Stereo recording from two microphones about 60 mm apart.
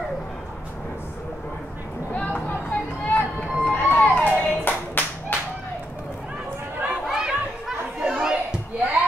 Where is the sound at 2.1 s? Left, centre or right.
Left.